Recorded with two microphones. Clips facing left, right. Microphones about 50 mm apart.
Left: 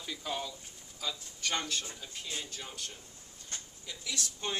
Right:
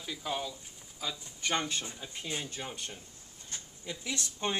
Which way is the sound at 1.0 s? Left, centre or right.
Centre.